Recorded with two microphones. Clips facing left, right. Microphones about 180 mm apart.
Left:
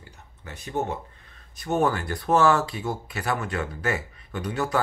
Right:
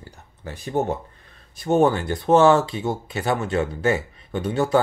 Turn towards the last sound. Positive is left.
turn(degrees=-25)  # may be behind; listen again after turning